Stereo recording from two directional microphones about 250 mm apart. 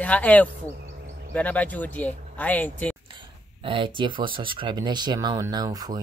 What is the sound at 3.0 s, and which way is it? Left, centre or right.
Speech, right.